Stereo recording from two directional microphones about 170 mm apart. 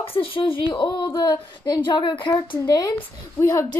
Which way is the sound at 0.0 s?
35° left (ahead or behind).